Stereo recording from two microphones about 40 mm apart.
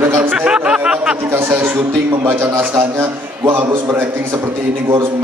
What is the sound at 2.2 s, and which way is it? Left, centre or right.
A man's voice, right.